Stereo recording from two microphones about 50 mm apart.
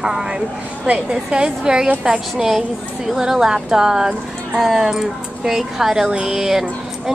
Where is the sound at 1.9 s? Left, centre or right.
Right.